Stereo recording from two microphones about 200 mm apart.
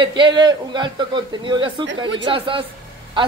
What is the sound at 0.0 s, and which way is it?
A man's voice, 25° right (ahead or behind).